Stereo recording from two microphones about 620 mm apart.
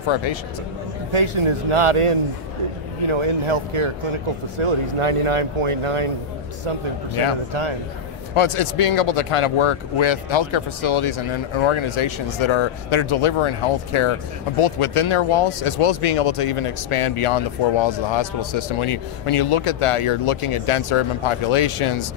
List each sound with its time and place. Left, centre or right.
0.1 s speech: left
1.1 s speech: right
8.4 s speech: left